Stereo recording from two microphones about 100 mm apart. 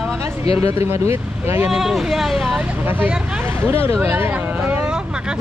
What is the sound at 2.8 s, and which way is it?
Speech, 20° right (ahead or behind).